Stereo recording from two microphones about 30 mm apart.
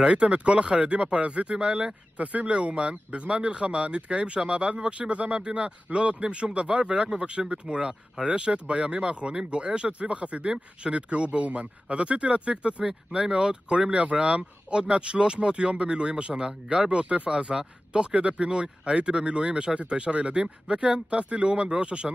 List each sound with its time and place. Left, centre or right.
0.0 s speech: right
2.1 s speech: right
2.5 s speech: right
12.4 s speech: right
12.8 s speech: right
17.0 s speech: right
17.3 s speech: right
20.1 s speech: right
20.3 s speech: right
21.1 s speech: right
21.7 s speech: right